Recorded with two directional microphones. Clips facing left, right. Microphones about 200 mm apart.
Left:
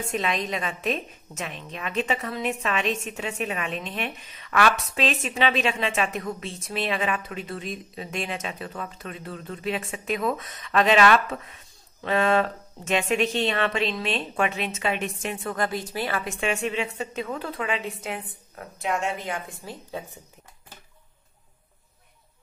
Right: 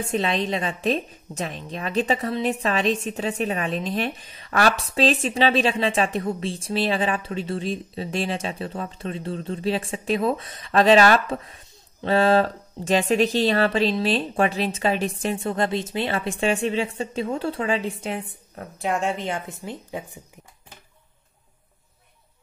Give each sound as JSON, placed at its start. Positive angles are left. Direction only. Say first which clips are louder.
{"t": 0.0, "sound": "a woman's voice", "louder": "right 4 dB", "side_deg": -30}